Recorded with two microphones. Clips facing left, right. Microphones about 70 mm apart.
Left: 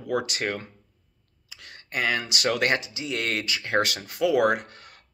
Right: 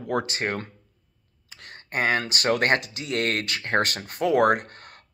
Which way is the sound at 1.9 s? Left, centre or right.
Right.